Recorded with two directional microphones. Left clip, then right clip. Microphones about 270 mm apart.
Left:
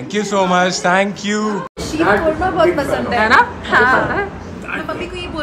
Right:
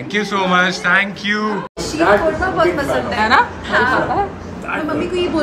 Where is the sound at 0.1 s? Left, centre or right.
Centre.